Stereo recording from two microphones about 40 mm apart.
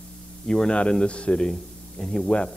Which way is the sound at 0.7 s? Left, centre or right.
Left.